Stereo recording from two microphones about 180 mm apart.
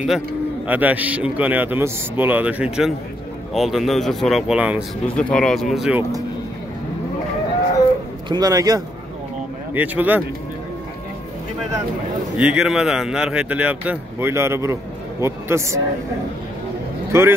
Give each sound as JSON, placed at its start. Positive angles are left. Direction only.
{"t": 0.7, "sound": "speech", "side_deg": -10}
{"t": 5.0, "sound": "speech", "side_deg": 5}
{"t": 8.3, "sound": "a man's voice", "side_deg": -20}
{"t": 12.4, "sound": "speech", "side_deg": -5}
{"t": 17.1, "sound": "speech", "side_deg": -15}